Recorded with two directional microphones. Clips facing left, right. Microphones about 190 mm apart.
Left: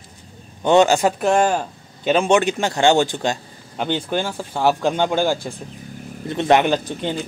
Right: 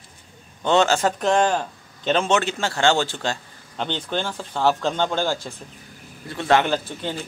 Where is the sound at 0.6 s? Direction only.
15° left (ahead or behind).